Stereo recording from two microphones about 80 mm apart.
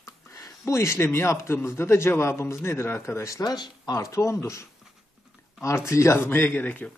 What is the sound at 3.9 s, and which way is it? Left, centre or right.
Speech, left.